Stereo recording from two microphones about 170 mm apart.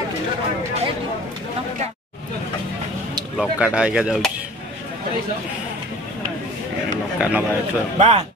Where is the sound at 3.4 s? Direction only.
5° right (ahead or behind).